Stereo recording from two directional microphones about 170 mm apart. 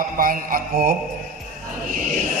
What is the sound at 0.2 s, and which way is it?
Speech, 55° right (ahead or behind).